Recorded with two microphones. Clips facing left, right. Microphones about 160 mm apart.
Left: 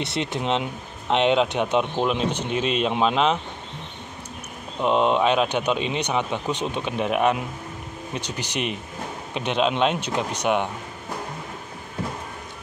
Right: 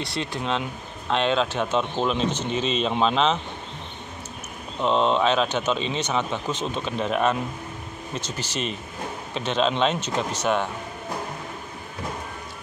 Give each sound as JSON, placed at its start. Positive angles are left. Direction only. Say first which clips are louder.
{"t": 0.0, "sound": "speech", "louder": "left 3 dB", "side_deg": 20}
{"t": 4.8, "sound": "speech", "louder": "left 1 dB", "side_deg": 10}